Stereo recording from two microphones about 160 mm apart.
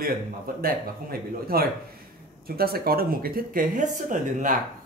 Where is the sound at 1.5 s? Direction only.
70° right (ahead or behind).